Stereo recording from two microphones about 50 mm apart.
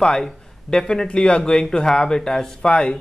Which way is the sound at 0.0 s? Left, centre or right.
Centre.